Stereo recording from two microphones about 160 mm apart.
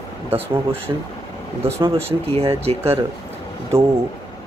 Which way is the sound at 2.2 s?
40° right (ahead or behind).